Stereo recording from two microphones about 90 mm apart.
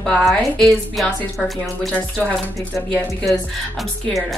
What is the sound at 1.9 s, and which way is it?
Speech, 15° left (ahead or behind).